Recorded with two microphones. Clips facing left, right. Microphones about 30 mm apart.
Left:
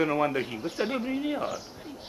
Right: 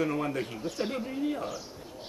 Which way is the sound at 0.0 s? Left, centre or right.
Left.